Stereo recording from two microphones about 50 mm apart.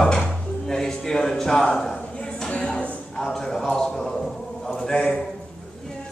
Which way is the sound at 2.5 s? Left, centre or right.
Left.